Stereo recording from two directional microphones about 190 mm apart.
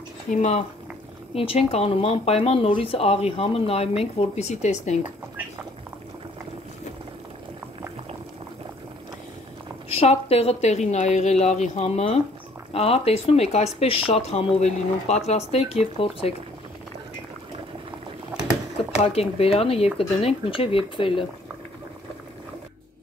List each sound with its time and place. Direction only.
0.3 s speech: 35° left (ahead or behind)
9.8 s speech: 30° left (ahead or behind)
19.0 s speech: 30° left (ahead or behind)